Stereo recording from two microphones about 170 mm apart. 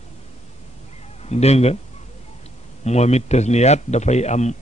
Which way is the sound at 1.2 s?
40° left (ahead or behind).